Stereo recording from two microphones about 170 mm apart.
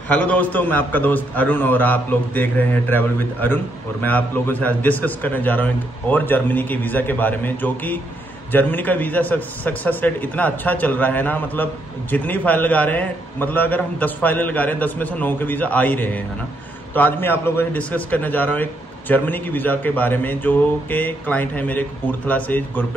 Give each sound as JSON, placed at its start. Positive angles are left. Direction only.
{"t": 0.1, "sound": "a man's voice", "side_deg": 10}